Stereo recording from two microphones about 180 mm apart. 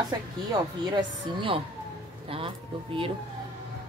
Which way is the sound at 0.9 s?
30° right (ahead or behind).